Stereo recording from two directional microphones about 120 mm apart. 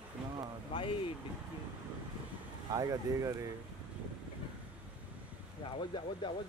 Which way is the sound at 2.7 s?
30° right (ahead or behind).